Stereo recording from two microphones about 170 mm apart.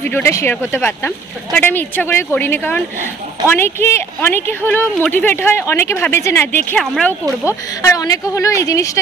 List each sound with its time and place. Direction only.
0.1 s speech: 15° left (ahead or behind)
7.4 s a woman's voice: 20° left (ahead or behind)